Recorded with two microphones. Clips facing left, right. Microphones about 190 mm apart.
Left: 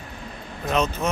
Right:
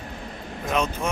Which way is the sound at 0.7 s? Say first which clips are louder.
Left 2 dB; 10° right (ahead or behind).